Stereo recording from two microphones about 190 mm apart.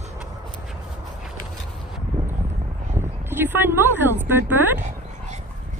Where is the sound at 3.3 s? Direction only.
10° right (ahead or behind).